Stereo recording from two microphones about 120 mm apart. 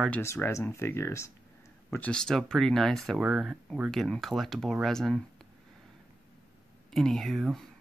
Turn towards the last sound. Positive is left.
turn(degrees=0)  # may be behind; listen again after turning